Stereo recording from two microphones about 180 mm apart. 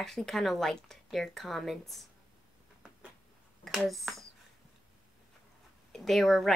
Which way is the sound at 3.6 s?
Centre (ahead or behind).